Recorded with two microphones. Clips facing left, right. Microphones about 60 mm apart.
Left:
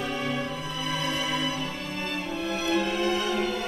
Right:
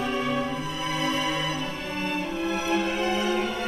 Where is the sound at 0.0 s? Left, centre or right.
Right.